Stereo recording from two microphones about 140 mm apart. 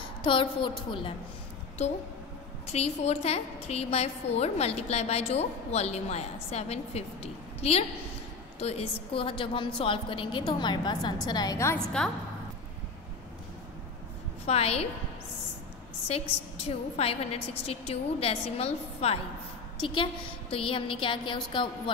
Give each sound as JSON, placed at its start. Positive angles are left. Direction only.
{"t": 0.2, "sound": "a woman's voice", "side_deg": 35}
{"t": 2.6, "sound": "a woman's voice", "side_deg": 50}
{"t": 14.4, "sound": "a woman's voice", "side_deg": 45}
{"t": 16.1, "sound": "a woman's voice", "side_deg": 45}